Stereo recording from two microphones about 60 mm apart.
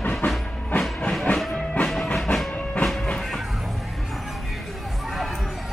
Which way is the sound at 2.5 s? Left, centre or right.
Left.